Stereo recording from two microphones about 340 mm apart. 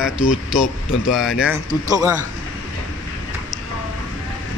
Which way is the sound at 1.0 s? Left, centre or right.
Centre.